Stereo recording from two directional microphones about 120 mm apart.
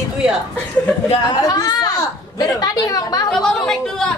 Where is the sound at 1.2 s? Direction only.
30° left (ahead or behind).